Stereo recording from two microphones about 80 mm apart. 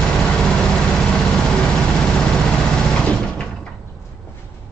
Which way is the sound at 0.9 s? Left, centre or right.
Centre.